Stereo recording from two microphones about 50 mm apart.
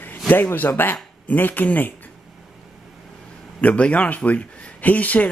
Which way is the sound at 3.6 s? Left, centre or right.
Left.